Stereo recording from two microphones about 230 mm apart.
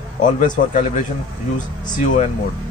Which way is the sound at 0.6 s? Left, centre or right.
Left.